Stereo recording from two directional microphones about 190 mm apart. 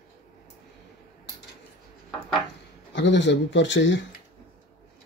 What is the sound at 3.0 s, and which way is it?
Speech, 70° left (ahead or behind).